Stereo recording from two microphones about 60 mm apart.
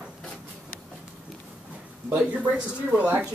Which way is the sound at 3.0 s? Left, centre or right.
Centre.